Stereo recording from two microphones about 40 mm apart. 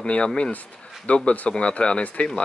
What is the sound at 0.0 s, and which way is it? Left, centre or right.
Speech, left.